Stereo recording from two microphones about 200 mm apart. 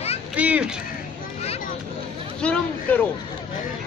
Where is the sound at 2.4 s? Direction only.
5° left (ahead or behind).